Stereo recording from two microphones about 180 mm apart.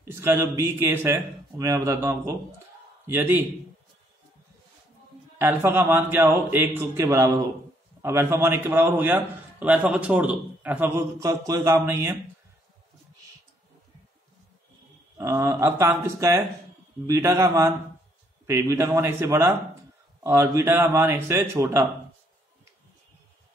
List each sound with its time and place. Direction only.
0.1 s a man's voice: 15° right (ahead or behind)
5.4 s a man's voice: 15° right (ahead or behind)
15.1 s a man's voice: 15° right (ahead or behind)